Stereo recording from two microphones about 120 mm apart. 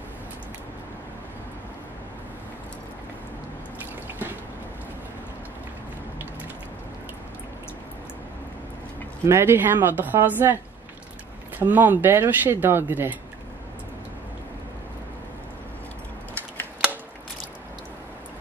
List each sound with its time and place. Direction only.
9.2 s speech: 20° right (ahead or behind)
11.6 s speech: 15° right (ahead or behind)